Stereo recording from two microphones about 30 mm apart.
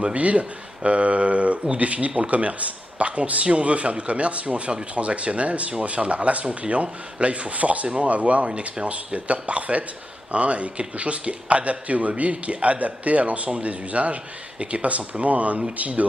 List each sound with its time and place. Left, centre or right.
0.1 s speech: right
8.8 s speech: right
9.3 s speech: right